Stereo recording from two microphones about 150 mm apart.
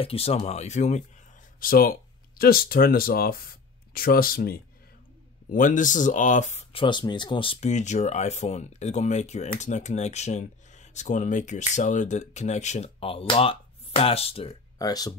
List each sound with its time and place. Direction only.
0.0 s speech: 40° left (ahead or behind)
1.6 s speech: 70° left (ahead or behind)
5.5 s speech: 60° left (ahead or behind)
6.7 s speech: 35° left (ahead or behind)
7.7 s speech: 50° left (ahead or behind)
14.8 s speech: 25° left (ahead or behind)